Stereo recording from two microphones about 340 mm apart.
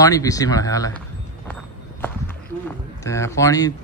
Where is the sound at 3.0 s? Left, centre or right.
Centre.